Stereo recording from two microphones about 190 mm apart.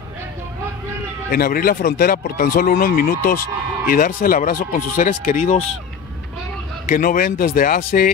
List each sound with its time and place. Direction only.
1.3 s speech: 50° left (ahead or behind)
6.9 s speech: 50° left (ahead or behind)